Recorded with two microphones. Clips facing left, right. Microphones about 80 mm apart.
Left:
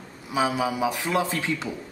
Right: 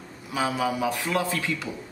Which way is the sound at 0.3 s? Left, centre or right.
Centre.